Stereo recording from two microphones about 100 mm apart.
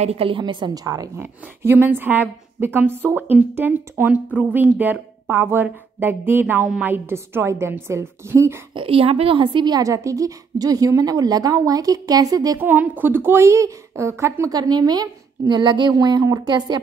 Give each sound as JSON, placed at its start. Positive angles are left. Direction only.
{"t": 0.0, "sound": "a woman's voice", "side_deg": -80}
{"t": 0.4, "sound": "a woman's voice", "side_deg": -45}
{"t": 1.1, "sound": "a woman's voice", "side_deg": -25}
{"t": 8.7, "sound": "a woman's voice", "side_deg": -70}
{"t": 9.8, "sound": "a woman's voice", "side_deg": -30}
{"t": 12.5, "sound": "a woman's voice", "side_deg": -20}
{"t": 14.5, "sound": "a woman's voice", "side_deg": -40}